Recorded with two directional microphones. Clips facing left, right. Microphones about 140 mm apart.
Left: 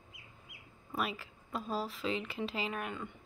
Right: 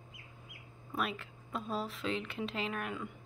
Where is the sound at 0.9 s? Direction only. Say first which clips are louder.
Even; centre (ahead or behind).